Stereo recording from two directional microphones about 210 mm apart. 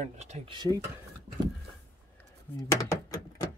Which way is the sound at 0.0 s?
35° right (ahead or behind).